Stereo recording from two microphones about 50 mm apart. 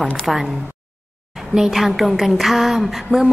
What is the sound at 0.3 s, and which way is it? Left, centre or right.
Speech, centre.